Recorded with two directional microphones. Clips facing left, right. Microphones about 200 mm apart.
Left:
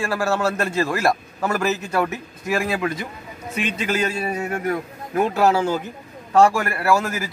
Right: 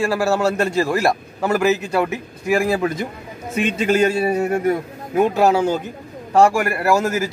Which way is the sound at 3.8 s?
30° right (ahead or behind).